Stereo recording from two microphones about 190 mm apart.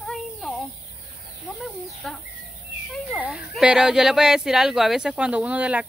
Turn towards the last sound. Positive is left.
turn(degrees=-10)  # may be behind; listen again after turning